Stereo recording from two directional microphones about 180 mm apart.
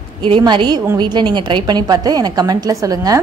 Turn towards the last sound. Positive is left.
turn(degrees=-20)  # may be behind; listen again after turning